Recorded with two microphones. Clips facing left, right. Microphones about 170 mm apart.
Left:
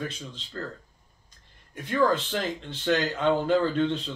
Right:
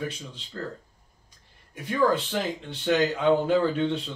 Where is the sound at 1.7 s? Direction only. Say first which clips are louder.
Even; 5° right (ahead or behind).